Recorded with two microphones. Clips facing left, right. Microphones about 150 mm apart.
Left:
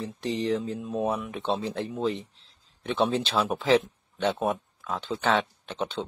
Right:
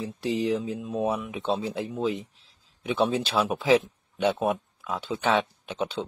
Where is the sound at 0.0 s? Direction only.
10° right (ahead or behind).